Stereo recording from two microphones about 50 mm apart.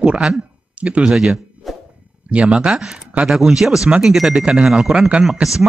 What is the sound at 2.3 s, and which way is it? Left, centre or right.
Speech, centre.